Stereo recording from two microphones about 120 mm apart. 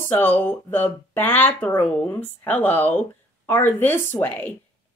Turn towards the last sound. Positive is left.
turn(degrees=15)  # may be behind; listen again after turning